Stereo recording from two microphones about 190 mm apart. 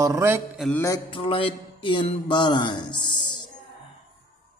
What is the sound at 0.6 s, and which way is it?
Mantra, 5° left (ahead or behind).